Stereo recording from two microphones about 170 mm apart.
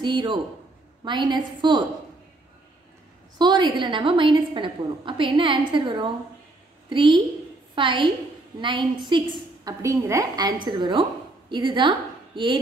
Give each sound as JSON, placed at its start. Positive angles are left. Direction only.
{"t": 0.0, "sound": "a woman's voice", "side_deg": -25}
{"t": 3.3, "sound": "a woman's voice", "side_deg": -25}
{"t": 9.7, "sound": "a woman's voice", "side_deg": -20}